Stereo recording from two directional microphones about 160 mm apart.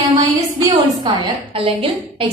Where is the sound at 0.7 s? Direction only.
35° right (ahead or behind).